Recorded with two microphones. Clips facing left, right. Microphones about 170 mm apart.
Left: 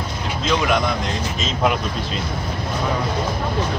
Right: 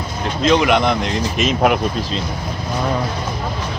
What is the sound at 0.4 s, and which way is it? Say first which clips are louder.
Speech: right 5 dB; 70° right (ahead or behind).